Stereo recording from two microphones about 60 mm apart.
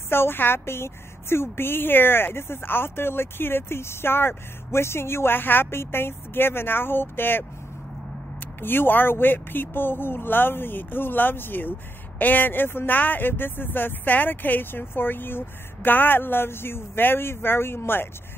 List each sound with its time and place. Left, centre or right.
0.1 s a woman's voice: left
8.5 s a woman's voice: left